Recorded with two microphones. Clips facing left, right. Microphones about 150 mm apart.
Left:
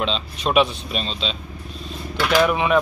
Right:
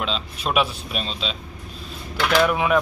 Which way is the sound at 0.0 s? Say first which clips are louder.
Left 3 dB; 5° right (ahead or behind).